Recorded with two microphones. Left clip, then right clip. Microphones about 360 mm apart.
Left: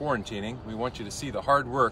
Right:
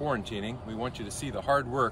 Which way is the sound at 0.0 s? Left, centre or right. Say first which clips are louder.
Left 2 dB; centre.